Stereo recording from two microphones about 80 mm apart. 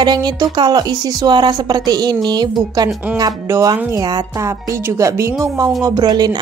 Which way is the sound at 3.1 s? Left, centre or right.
Centre.